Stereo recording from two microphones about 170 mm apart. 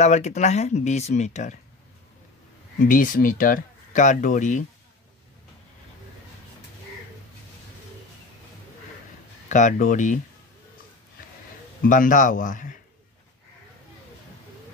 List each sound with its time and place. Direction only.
0.0 s speech: 40° left (ahead or behind)
2.9 s speech: 55° left (ahead or behind)
9.5 s speech: 45° left (ahead or behind)
11.8 s speech: 50° left (ahead or behind)